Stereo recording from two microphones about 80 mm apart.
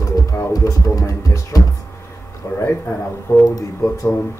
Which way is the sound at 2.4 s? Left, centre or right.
Left.